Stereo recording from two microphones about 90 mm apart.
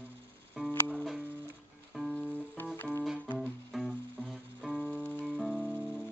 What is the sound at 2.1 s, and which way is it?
Music, 15° left (ahead or behind).